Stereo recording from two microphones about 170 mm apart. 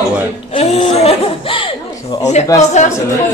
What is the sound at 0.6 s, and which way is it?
Speech, 35° left (ahead or behind).